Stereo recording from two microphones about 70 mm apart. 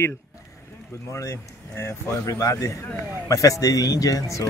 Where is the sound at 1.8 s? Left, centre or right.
Left.